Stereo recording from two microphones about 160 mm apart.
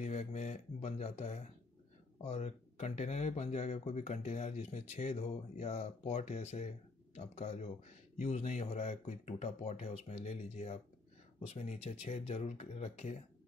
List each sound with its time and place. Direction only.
0.0 s speech: 45° left (ahead or behind)